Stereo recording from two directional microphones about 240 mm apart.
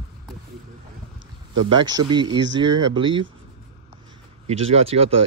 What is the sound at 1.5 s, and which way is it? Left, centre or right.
Speech, right.